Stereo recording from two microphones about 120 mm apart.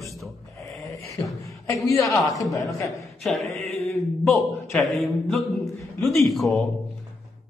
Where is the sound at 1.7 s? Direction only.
25° left (ahead or behind).